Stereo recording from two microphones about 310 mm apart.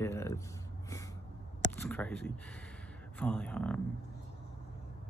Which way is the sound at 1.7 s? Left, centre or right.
Centre.